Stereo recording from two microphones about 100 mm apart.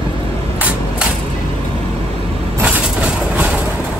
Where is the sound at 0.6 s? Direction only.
15° right (ahead or behind).